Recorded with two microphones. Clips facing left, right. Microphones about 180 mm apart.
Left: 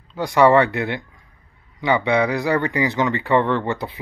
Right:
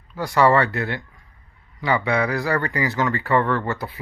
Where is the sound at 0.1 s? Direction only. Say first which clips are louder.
Left 3 dB; 20° left (ahead or behind).